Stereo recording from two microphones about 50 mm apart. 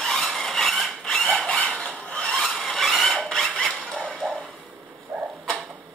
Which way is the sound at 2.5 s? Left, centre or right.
Centre.